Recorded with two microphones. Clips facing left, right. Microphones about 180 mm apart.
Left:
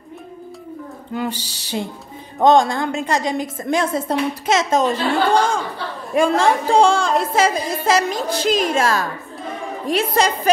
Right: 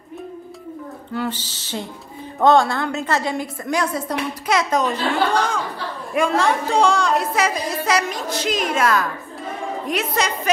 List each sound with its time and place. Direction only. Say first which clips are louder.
1.1 s a woman's voice: left 1 dB; 15° left (ahead or behind); by 10.5 s 30° left (ahead or behind)